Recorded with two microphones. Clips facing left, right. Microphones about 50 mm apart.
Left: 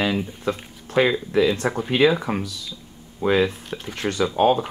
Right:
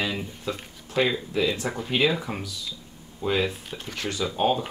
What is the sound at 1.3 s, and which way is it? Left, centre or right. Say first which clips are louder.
Speech: left 8 dB; left.